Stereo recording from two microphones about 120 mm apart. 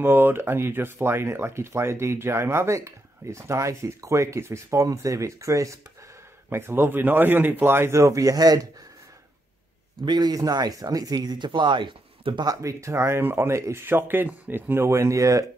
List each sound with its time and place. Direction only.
0.0 s speech: 15° right (ahead or behind)
10.0 s speech: 35° right (ahead or behind)
12.6 s speech: 25° right (ahead or behind)